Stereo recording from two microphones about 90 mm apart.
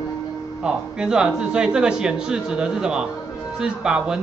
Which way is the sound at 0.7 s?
10° right (ahead or behind).